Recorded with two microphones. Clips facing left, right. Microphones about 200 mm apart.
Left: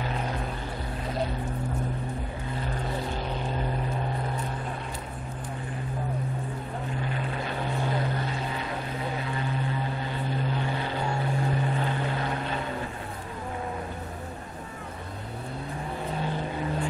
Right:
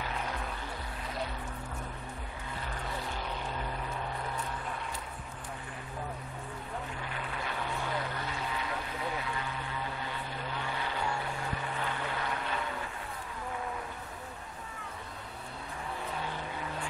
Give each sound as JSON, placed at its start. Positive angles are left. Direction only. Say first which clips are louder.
{"t": 3.2, "sound": "vehicle", "louder": "left 6 dB", "side_deg": 30}
{"t": 7.1, "sound": "vehicle", "louder": "left 7 dB", "side_deg": 30}